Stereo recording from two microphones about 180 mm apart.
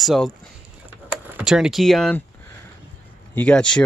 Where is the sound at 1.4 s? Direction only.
5° right (ahead or behind).